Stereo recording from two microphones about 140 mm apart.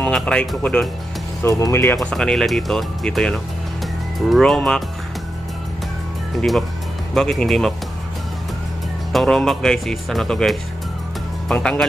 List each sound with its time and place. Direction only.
0.0 s speech: 5° left (ahead or behind)
1.4 s speech: 20° left (ahead or behind)
2.0 s speech: 5° left (ahead or behind)
7.2 s speech: centre (ahead or behind)
9.1 s speech: 5° left (ahead or behind)